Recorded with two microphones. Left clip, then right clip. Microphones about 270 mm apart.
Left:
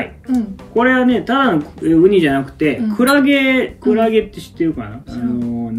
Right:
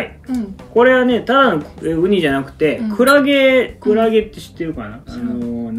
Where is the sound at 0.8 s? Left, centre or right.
Centre.